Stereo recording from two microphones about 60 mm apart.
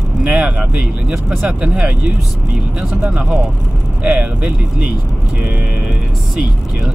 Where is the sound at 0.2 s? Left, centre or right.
Centre.